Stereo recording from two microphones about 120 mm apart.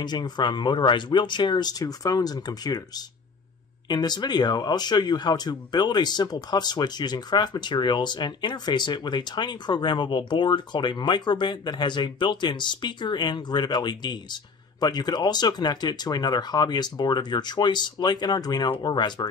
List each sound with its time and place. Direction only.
0.0 s speech: 35° left (ahead or behind)
3.9 s speech: 35° left (ahead or behind)